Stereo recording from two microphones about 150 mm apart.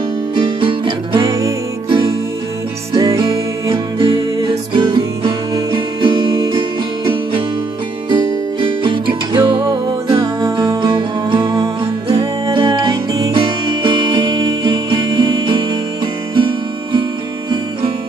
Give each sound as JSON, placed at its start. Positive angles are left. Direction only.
{"t": 0.4, "sound": "music", "side_deg": -35}
{"t": 1.9, "sound": "music", "side_deg": -35}
{"t": 8.1, "sound": "music", "side_deg": -35}
{"t": 10.4, "sound": "music", "side_deg": -20}